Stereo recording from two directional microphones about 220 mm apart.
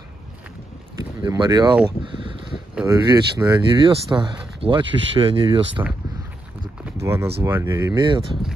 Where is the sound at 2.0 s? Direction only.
25° right (ahead or behind).